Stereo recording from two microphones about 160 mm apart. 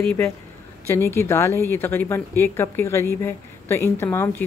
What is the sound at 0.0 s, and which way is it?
Speech, 10° left (ahead or behind).